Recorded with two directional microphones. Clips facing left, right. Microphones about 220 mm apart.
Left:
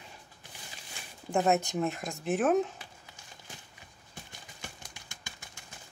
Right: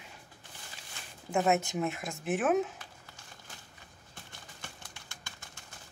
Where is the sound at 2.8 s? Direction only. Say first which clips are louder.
Left 1 dB; 15° left (ahead or behind).